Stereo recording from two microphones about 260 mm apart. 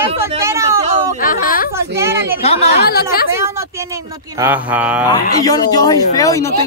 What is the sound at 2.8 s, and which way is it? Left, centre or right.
Speech, left.